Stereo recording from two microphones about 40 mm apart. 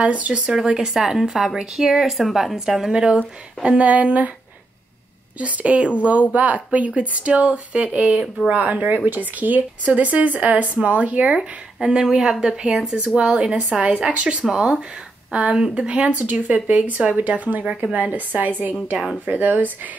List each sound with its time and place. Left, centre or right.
0.0 s speech: right
0.7 s a woman's voice: centre
2.9 s speech: right
5.4 s speech: right
11.3 s speech: centre
14.4 s speech: centre
15.9 s speech: right
16.2 s speech: right